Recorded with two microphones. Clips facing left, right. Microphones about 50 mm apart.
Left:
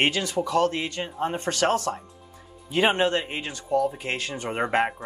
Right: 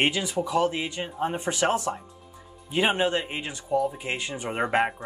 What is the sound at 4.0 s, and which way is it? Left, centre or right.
Speech, centre.